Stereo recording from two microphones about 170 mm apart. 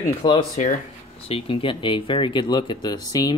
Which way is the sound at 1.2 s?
35° left (ahead or behind).